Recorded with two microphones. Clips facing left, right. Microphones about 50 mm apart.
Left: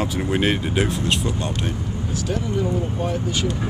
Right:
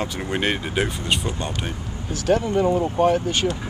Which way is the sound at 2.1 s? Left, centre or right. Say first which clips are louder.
Right 6 dB; right.